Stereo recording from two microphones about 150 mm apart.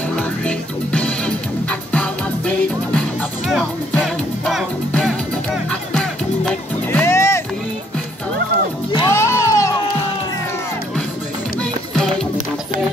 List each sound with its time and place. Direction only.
0.1 s music: 5° left (ahead or behind)
9.0 s music: 20° left (ahead or behind)